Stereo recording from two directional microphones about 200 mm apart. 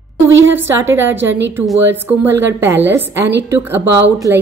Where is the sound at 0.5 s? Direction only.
10° right (ahead or behind).